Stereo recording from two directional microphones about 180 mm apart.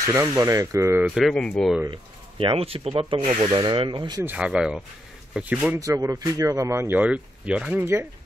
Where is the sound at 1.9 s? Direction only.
30° right (ahead or behind).